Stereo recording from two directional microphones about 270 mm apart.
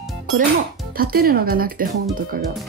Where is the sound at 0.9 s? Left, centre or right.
Right.